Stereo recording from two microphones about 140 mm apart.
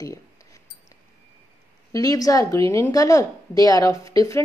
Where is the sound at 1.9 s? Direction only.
25° left (ahead or behind).